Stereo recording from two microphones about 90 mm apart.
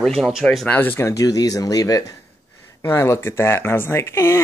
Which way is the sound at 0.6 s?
25° left (ahead or behind).